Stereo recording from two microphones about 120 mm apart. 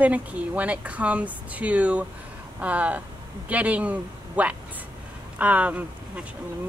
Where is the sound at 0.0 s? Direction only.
10° right (ahead or behind).